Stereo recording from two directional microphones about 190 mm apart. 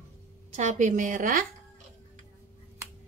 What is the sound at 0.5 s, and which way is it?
Speech, 40° right (ahead or behind).